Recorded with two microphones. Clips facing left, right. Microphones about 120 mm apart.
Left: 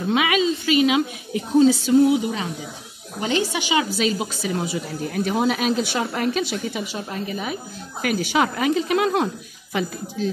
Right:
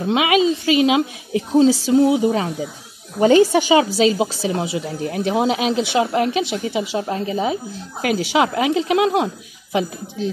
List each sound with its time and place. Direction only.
0.1 s a woman's voice: 25° right (ahead or behind)
3.2 s a woman's voice: 45° right (ahead or behind); by 10.2 s 20° right (ahead or behind)